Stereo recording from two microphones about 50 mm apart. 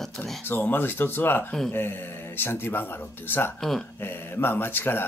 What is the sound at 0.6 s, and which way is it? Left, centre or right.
Speech, left.